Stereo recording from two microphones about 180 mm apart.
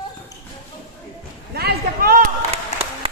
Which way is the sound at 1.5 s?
60° right (ahead or behind).